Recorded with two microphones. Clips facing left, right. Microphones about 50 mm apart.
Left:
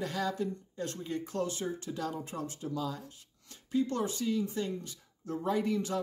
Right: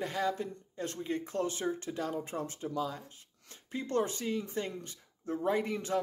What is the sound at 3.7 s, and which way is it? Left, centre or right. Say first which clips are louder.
A man's voice: left 1 dB; right.